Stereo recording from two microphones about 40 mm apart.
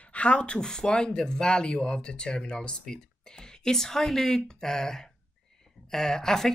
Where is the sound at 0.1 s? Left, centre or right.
Left.